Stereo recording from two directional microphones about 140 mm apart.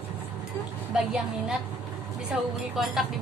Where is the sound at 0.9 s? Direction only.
5° right (ahead or behind).